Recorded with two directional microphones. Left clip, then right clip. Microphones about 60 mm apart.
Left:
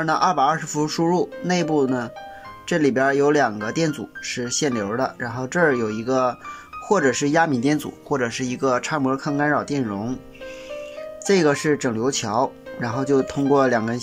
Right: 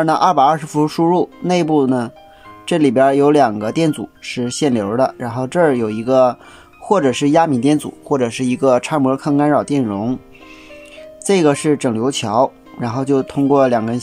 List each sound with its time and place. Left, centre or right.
0.0 s speech: right
11.2 s speech: right